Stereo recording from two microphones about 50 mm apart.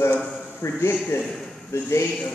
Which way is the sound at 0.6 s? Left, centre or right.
Left.